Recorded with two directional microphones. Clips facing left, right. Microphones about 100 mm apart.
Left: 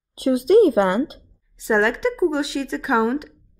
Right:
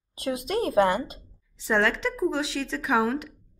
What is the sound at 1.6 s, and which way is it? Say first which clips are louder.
Speech: left 5 dB; 15° left (ahead or behind).